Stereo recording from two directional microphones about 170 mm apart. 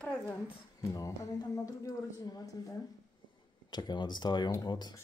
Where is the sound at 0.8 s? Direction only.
20° left (ahead or behind).